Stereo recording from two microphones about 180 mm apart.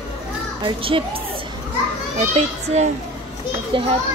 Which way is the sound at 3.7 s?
30° right (ahead or behind).